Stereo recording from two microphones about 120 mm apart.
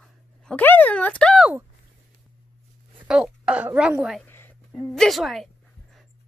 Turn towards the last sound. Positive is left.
turn(degrees=0)  # may be behind; listen again after turning